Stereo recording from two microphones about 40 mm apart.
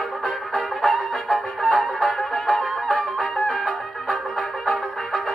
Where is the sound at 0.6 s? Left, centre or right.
Centre.